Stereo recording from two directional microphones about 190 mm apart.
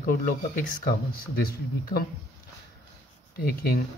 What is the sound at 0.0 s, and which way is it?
Speech, 45° left (ahead or behind).